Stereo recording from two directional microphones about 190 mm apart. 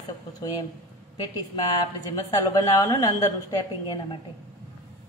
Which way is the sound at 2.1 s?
20° left (ahead or behind).